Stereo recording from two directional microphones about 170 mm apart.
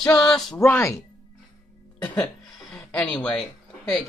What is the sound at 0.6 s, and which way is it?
Speech, 15° left (ahead or behind).